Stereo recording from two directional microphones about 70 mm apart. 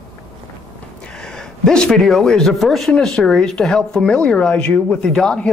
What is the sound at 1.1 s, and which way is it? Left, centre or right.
Speech, centre.